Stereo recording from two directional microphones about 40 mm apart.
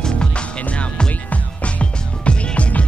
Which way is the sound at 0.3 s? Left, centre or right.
Left.